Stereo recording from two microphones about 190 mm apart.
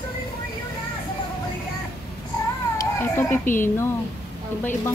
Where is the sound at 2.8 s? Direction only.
10° left (ahead or behind).